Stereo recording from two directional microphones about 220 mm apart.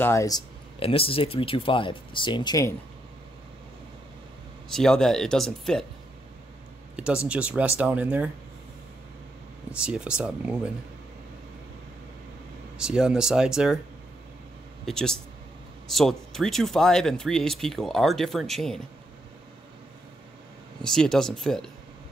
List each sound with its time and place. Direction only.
0.0 s speech: 15° left (ahead or behind)
0.7 s speech: 25° left (ahead or behind)
4.7 s speech: centre (ahead or behind)
7.2 s speech: 5° right (ahead or behind)
9.8 s speech: 5° right (ahead or behind)
12.7 s speech: 5° right (ahead or behind)
14.9 s speech: centre (ahead or behind)
20.8 s speech: 5° left (ahead or behind)